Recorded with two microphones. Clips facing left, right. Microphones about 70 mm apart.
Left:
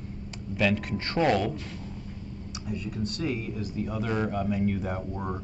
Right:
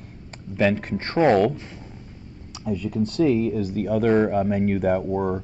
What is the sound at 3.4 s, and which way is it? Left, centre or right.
Speech, right.